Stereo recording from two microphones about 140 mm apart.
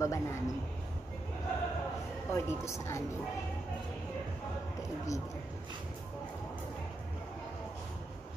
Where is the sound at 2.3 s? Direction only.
20° left (ahead or behind).